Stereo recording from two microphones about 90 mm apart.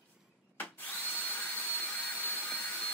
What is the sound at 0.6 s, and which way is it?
Drill, 20° left (ahead or behind).